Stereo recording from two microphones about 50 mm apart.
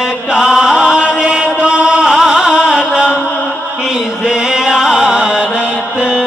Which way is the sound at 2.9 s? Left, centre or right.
Right.